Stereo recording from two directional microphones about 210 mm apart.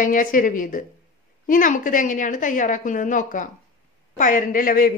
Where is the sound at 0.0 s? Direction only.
40° left (ahead or behind).